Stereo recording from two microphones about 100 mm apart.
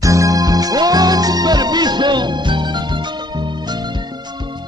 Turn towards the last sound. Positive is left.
turn(degrees=-50)  # may be behind; listen again after turning